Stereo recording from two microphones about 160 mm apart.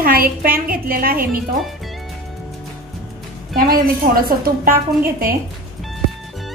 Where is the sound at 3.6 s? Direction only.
65° right (ahead or behind).